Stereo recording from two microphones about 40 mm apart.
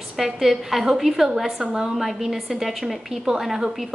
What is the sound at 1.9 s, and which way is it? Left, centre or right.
A woman's voice, centre.